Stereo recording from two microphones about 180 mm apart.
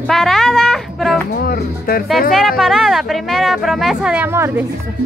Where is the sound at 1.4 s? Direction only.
55° left (ahead or behind).